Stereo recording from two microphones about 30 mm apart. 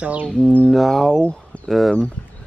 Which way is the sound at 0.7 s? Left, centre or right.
Centre.